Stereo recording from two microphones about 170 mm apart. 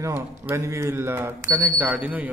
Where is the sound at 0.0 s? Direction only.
15° right (ahead or behind).